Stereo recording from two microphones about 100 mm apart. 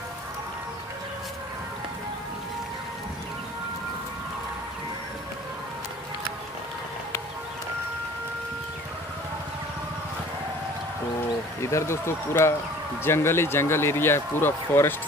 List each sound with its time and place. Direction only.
11.6 s speech: 30° left (ahead or behind)